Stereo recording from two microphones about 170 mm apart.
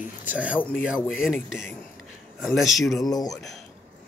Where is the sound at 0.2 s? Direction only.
10° right (ahead or behind).